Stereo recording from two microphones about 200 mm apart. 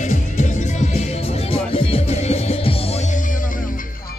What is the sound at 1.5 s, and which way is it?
Music, 30° left (ahead or behind).